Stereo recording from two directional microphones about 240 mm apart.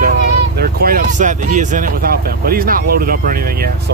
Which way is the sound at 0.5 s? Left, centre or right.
Right.